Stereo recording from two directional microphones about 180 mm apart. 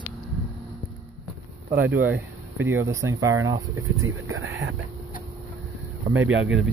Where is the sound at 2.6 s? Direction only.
15° right (ahead or behind).